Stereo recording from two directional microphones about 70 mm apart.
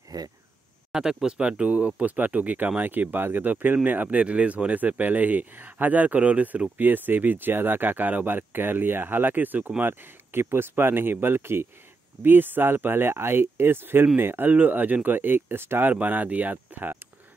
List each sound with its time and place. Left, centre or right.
0.1 s speech: right
0.9 s speech: centre; by 15.9 s right
15.9 s speech: right